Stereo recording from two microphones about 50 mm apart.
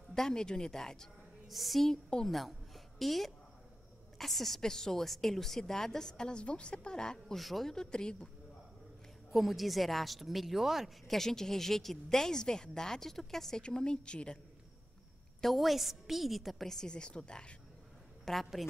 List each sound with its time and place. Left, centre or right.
0.1 s a woman's voice: centre
1.5 s a woman's voice: centre
7.3 s a woman's voice: centre
7.7 s a woman's voice: centre
9.3 s a woman's voice: centre
11.1 s a woman's voice: centre
13.6 s speech: centre
15.4 s a woman's voice: centre
18.2 s a woman's voice: centre